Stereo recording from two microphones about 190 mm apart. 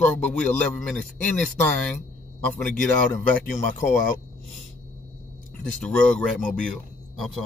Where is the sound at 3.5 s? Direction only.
40° left (ahead or behind).